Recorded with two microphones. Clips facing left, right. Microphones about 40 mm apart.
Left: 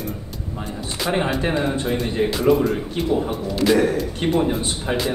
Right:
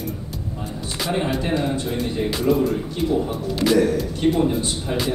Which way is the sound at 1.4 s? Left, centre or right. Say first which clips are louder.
Left 1 dB; left.